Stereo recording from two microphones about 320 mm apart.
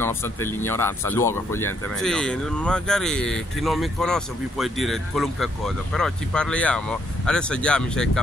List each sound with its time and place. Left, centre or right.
0.0 s speech: centre
1.6 s speech: left
2.0 s speech: centre